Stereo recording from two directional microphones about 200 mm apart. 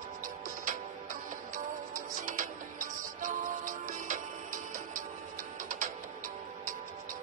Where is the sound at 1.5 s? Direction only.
40° right (ahead or behind).